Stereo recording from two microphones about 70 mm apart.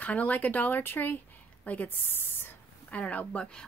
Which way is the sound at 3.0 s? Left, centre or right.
Left.